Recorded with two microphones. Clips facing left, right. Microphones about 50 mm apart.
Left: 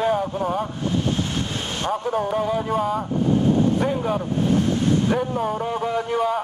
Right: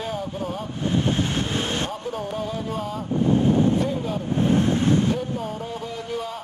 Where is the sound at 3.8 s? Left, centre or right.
Left.